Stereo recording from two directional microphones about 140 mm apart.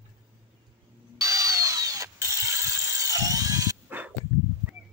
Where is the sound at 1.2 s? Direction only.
25° right (ahead or behind).